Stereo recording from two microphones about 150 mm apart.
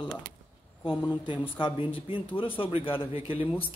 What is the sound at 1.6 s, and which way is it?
Speech, 35° left (ahead or behind).